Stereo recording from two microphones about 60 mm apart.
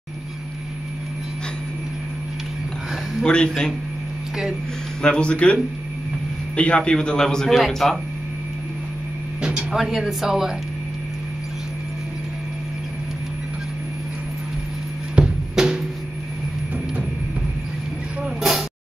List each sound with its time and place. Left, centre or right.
3.3 s a man's voice: centre
5.0 s a man's voice: centre
9.7 s speech: centre
15.1 s music: centre
18.2 s a sound: centre